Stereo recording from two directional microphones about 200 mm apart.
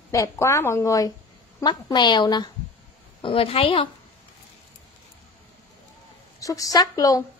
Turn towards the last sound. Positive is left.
turn(degrees=15)  # may be behind; listen again after turning